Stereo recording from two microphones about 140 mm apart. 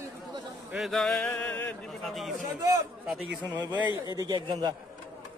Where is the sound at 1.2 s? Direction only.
10° left (ahead or behind).